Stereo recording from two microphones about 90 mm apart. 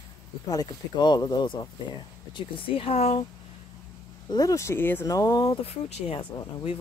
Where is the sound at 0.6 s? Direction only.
55° left (ahead or behind).